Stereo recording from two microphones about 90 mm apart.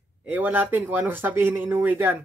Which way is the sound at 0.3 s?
20° right (ahead or behind).